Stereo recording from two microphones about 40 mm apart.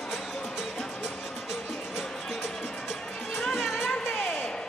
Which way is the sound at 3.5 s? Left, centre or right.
Centre.